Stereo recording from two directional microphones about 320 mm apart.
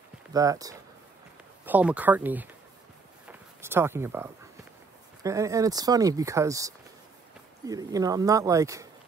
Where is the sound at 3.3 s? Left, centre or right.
Centre.